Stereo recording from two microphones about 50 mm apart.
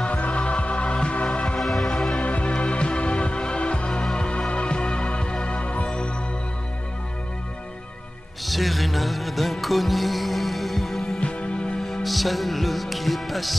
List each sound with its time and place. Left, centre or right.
0.0 s music: left
1.6 s music: centre
2.2 s music: left
8.5 s music: centre
11.1 s music: left
11.8 s music: centre